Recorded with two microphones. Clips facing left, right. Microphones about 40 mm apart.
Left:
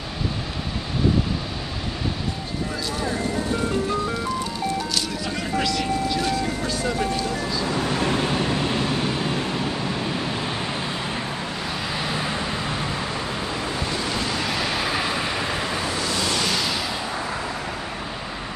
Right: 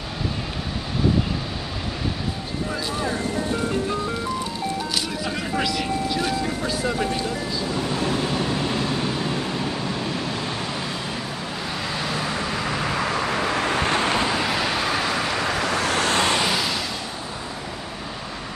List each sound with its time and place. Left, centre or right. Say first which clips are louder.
3.2 s ice cream truck: even; centre
5.5 s vehicle: left 2 dB; centre
7.6 s vehicle: left 2 dB; left
8.0 s vehicle: left 1 dB; left
8.4 s vehicle: left 1 dB; centre
12.0 s vehicle: even; centre
13.4 s vehicle: right 5 dB; right
13.8 s vehicle: right 5 dB; right
14.3 s vehicle: right 2 dB; centre
15.7 s vehicle: right 4 dB; right
16.4 s a sound: right 1 dB; centre